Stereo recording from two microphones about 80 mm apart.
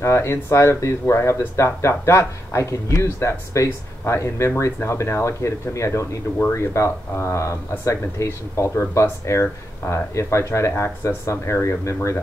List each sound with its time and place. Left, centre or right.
0.0 s speech: left